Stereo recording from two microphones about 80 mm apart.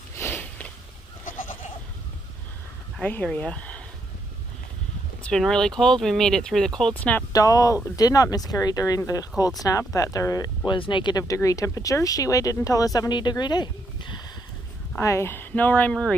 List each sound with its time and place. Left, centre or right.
0.1 s a sound: left
3.0 s speech: centre
5.4 s speech: centre
6.9 s speech: centre
7.3 s speech: left
10.7 s speech: left
11.1 s speech: left
13.1 s speech: left
15.0 s speech: left
15.9 s speech: centre